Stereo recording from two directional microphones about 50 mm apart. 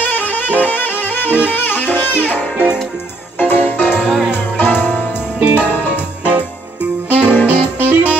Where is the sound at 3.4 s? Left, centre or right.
Left.